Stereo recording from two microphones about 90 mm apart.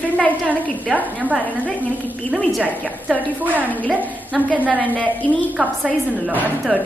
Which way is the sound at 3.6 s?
20° left (ahead or behind).